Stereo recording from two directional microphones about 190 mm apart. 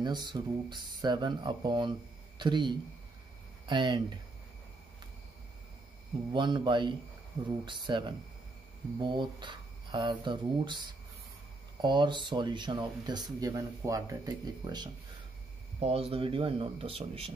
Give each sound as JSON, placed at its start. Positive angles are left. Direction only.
{"t": 0.0, "sound": "speech", "side_deg": -25}
{"t": 6.3, "sound": "speech", "side_deg": -25}
{"t": 11.8, "sound": "speech", "side_deg": -25}